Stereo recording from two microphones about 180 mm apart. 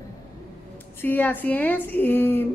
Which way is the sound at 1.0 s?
10° left (ahead or behind).